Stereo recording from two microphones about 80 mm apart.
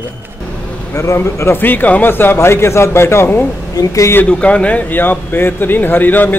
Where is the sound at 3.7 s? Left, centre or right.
Left.